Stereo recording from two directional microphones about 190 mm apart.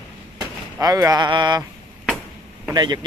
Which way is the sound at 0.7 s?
20° right (ahead or behind).